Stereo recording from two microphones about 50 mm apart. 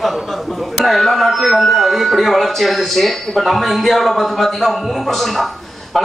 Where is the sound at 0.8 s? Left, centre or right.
Centre.